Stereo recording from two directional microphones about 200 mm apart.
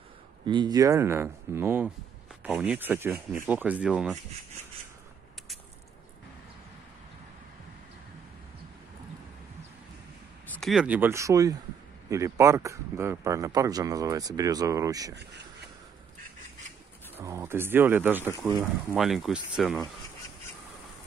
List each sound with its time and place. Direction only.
0.5 s speech: 20° right (ahead or behind); by 4.2 s 5° right (ahead or behind)
10.5 s speech: centre (ahead or behind); by 15.1 s 20° right (ahead or behind)
17.2 s speech: 15° right (ahead or behind)